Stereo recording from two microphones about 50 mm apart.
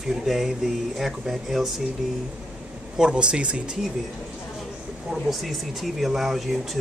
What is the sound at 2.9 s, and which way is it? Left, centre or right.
Speech, centre.